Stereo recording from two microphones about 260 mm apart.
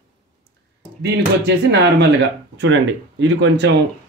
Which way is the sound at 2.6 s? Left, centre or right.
Right.